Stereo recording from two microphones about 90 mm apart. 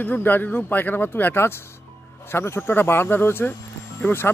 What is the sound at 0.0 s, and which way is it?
Speech, 20° left (ahead or behind).